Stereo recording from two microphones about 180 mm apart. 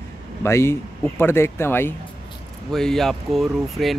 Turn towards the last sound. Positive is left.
turn(degrees=0)  # may be behind; listen again after turning